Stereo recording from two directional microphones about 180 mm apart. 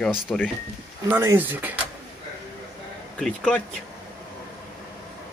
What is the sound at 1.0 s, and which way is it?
Speech, 10° right (ahead or behind).